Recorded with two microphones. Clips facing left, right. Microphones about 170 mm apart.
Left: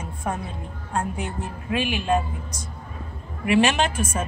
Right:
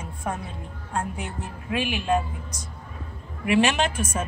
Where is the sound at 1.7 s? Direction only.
10° right (ahead or behind).